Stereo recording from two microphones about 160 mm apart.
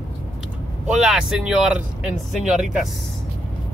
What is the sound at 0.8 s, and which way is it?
Speech, 5° right (ahead or behind).